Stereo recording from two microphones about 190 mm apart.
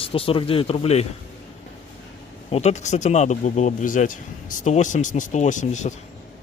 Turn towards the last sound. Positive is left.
turn(degrees=40)  # may be behind; listen again after turning